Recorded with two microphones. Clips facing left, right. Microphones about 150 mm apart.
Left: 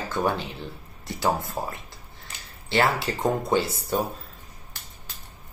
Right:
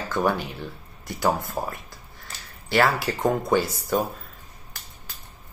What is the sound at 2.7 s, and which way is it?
Speech, 25° left (ahead or behind).